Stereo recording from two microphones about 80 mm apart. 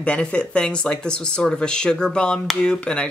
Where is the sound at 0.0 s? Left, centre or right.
Centre.